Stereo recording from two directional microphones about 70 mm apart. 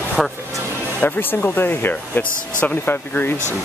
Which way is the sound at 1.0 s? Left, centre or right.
Left.